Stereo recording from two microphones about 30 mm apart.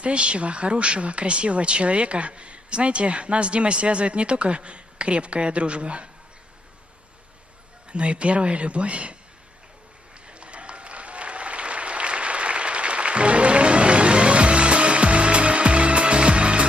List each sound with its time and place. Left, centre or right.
0.0 s speech: right
7.9 s speech: right
10.2 s applause: right